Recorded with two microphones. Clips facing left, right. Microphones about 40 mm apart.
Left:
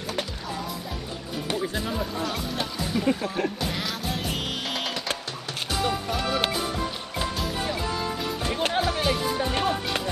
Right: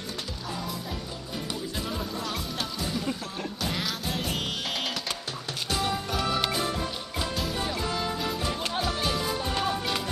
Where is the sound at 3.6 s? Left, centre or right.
Centre.